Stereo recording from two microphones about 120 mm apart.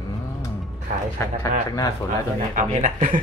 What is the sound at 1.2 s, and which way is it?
Speech, 20° left (ahead or behind).